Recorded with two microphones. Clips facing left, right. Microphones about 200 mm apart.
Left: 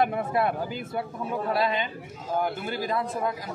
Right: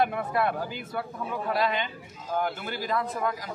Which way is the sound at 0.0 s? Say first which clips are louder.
Left 1 dB; 25° left (ahead or behind).